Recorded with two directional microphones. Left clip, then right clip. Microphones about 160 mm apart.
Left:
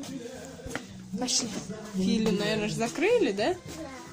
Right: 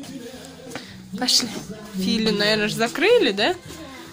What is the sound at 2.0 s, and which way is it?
Speech, 10° right (ahead or behind).